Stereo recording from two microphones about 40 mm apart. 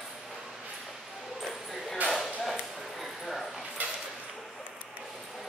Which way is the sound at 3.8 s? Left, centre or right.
Right.